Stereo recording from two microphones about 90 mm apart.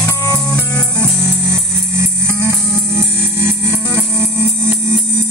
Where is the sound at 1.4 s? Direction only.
30° right (ahead or behind).